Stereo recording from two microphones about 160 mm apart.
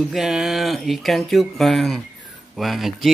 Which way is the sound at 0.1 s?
5° right (ahead or behind).